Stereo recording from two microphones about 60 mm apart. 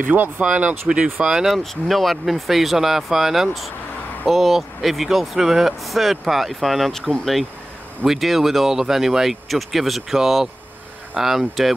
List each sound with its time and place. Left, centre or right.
0.1 s speech: right
1.2 s speech: centre
1.5 s speech: centre